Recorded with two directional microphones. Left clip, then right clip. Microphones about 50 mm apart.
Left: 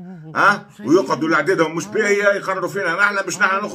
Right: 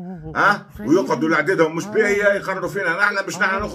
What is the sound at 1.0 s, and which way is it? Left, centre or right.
Speech, centre.